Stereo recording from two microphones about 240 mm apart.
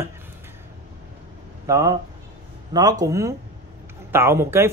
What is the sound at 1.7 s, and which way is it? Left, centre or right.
A man's voice, centre.